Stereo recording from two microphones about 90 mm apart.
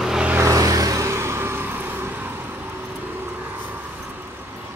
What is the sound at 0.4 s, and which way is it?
Vehicle, 40° right (ahead or behind).